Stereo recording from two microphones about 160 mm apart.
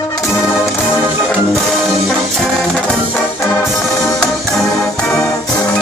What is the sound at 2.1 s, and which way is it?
Music, 5° left (ahead or behind).